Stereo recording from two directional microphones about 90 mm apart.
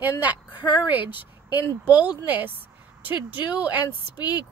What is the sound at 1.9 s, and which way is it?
A woman's voice, 15° right (ahead or behind).